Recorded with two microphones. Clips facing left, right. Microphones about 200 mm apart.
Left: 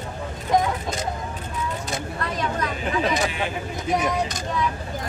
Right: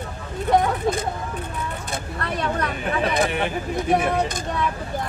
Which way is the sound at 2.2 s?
60° right (ahead or behind).